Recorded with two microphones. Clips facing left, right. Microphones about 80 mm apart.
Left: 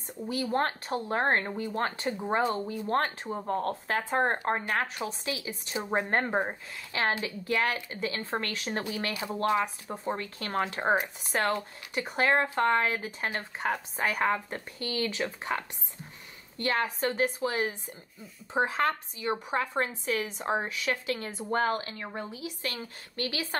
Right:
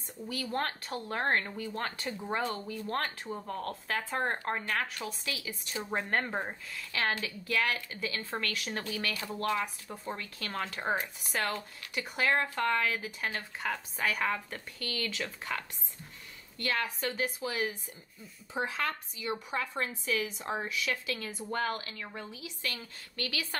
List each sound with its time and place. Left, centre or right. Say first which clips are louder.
0.3 s speech: left 5 dB; left